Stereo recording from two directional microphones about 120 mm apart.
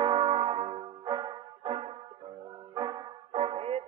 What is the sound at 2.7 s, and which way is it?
Music, 40° right (ahead or behind).